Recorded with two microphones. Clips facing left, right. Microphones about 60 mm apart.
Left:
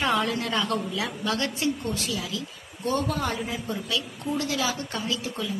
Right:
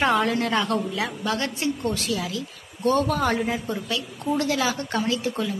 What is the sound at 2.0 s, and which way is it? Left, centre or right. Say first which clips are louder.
A woman's voice: right 3 dB; right.